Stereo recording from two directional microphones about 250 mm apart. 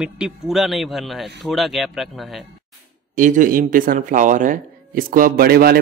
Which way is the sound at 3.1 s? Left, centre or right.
Right.